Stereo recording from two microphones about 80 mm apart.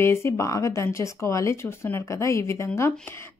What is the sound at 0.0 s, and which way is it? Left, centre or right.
Speech, left.